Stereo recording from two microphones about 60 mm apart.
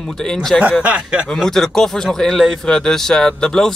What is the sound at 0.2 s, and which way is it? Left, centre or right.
Speech, centre.